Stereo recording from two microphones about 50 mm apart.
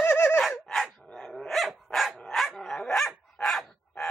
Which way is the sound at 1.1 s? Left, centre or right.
Centre.